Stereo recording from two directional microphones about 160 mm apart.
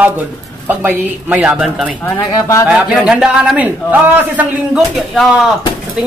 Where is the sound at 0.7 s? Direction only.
10° right (ahead or behind).